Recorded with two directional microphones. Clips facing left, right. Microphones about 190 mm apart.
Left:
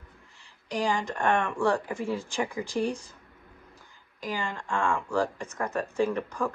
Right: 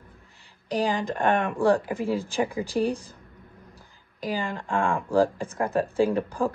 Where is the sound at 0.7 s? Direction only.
35° right (ahead or behind).